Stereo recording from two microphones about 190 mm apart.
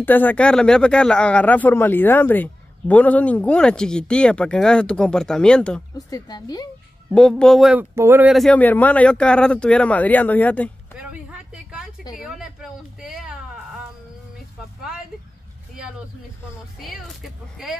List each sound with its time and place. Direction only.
0.0 s speech: 10° left (ahead or behind)
5.9 s speech: 20° left (ahead or behind)
7.1 s speech: 5° left (ahead or behind)
7.9 s speech: 10° right (ahead or behind); by 10.7 s 10° left (ahead or behind)
11.0 s a sound: 5° right (ahead or behind)
12.2 s speech: 5° right (ahead or behind)
16.8 s speech: centre (ahead or behind)